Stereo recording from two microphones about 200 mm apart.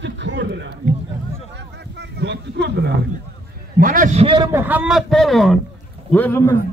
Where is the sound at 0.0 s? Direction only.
60° right (ahead or behind).